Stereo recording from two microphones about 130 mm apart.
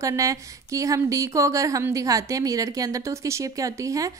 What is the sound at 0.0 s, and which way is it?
A woman's voice, 25° right (ahead or behind).